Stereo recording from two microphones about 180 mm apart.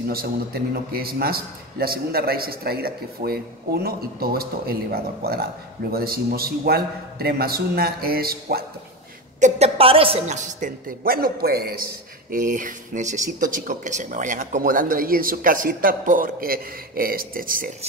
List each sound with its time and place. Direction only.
0.1 s a man's voice: 55° right (ahead or behind)
9.4 s a woman's voice: 35° right (ahead or behind); by 17.7 s 50° right (ahead or behind)